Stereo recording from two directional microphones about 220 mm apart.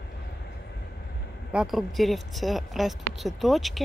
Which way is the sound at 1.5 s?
5° right (ahead or behind).